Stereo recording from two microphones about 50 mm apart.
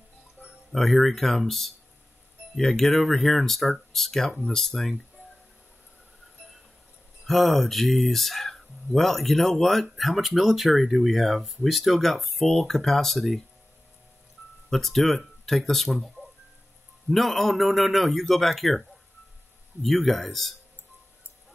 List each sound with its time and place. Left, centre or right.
0.7 s speech: centre
7.2 s speech: centre
14.7 s speech: centre